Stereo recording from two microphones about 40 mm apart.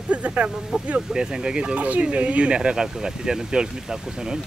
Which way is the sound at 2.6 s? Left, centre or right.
Centre.